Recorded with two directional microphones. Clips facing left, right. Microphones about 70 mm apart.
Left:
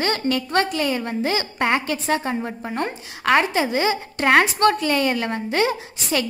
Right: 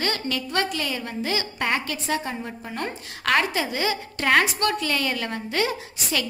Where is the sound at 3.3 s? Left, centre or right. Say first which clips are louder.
Left 4 dB; left.